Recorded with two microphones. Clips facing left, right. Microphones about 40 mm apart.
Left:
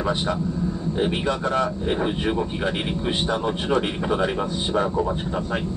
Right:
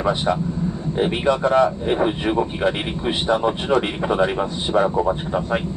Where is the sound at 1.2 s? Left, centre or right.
Right.